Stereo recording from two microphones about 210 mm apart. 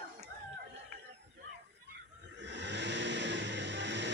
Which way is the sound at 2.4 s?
55° right (ahead or behind).